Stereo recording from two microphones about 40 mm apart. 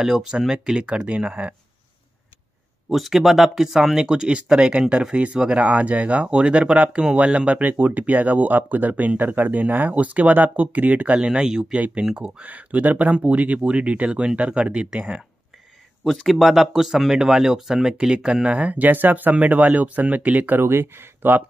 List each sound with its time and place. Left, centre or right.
0.0 s speech: centre
1.0 s speech: right
2.9 s speech: centre; by 5.7 s right
5.7 s speech: right
7.6 s speech: right
11.1 s speech: right
12.4 s speech: right
13.6 s speech: right
13.8 s speech: right
16.0 s speech: centre; by 19.3 s right
19.3 s speech: right
20.6 s speech: right